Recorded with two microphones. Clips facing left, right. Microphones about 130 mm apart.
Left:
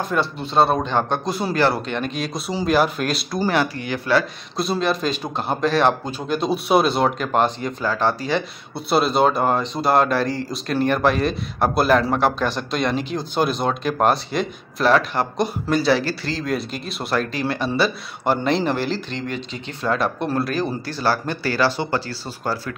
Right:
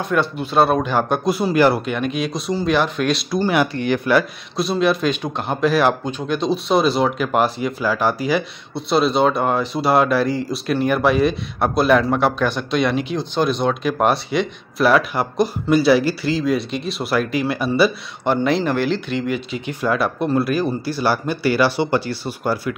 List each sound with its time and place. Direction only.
0.0 s speech: centre (ahead or behind)
3.7 s speech: 20° right (ahead or behind)
4.6 s speech: 5° right (ahead or behind)
8.7 s speech: 5° left (ahead or behind); by 22.8 s 15° right (ahead or behind)